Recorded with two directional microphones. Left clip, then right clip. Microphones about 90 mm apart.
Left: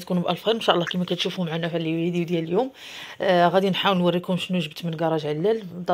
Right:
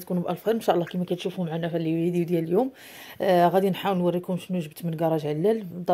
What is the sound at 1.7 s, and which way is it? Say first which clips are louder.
Speech: right 2 dB; 50° right (ahead or behind).